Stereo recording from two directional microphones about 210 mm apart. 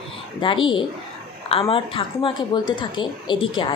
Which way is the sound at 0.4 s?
25° left (ahead or behind).